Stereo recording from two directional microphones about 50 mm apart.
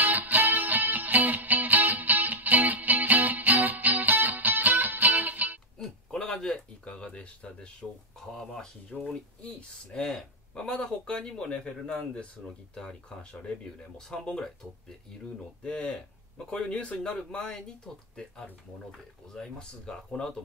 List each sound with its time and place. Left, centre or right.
0.0 s music: right
5.8 s a sound: centre
8.2 s speech: centre
19.4 s speech: centre